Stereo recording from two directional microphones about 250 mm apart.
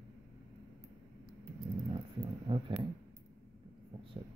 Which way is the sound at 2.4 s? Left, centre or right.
Centre.